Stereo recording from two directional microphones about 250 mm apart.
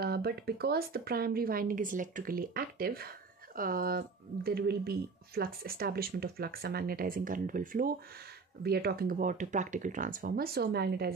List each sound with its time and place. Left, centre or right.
0.0 s speech: right